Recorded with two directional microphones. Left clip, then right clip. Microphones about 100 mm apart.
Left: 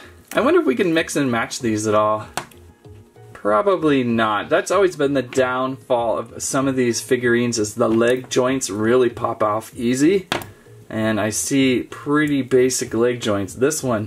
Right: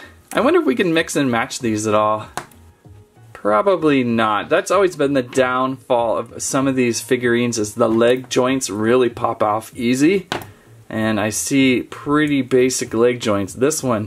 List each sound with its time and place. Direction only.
0.5 s speech: 15° right (ahead or behind)
3.4 s speech: 15° right (ahead or behind)
4.4 s speech: centre (ahead or behind)
4.6 s speech: 15° right (ahead or behind)